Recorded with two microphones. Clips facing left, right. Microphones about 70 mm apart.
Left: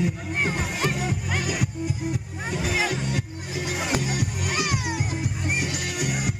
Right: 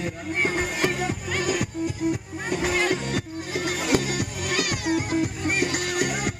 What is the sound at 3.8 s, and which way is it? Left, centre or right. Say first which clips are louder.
Music: right 3 dB; centre.